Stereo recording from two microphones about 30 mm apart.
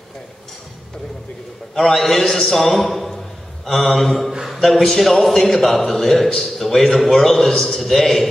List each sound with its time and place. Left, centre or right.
1.8 s a man's voice: centre
2.2 s a man's voice: centre
2.5 s a man's voice: centre
7.5 s a man's voice: left
7.8 s a man's voice: centre